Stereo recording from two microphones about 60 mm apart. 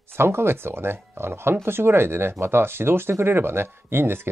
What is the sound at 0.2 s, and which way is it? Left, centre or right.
Speech, right.